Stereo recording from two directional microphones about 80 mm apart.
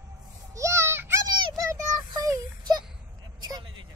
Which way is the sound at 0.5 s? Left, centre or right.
Right.